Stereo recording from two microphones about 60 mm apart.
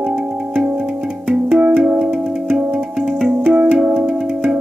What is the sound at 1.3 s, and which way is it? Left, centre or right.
Music, right.